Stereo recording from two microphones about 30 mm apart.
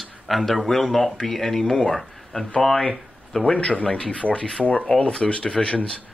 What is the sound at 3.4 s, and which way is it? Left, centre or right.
A man's voice, left.